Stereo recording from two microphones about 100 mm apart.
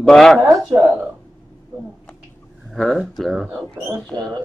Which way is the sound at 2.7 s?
5° left (ahead or behind).